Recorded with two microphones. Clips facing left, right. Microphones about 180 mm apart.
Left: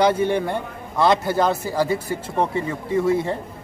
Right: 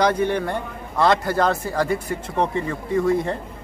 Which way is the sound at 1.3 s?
Centre (ahead or behind).